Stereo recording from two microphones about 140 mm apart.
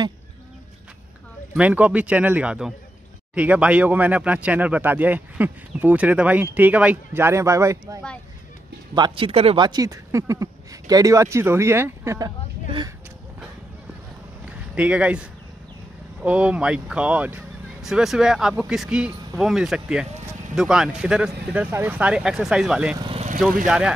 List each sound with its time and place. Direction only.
1.5 s speech: 10° right (ahead or behind)
8.9 s speech: 35° right (ahead or behind)
9.7 s speech: 25° right (ahead or behind)
14.4 s a sound: 10° right (ahead or behind)
16.2 s speech: 10° right (ahead or behind)
22.9 s vehicle: 35° right (ahead or behind)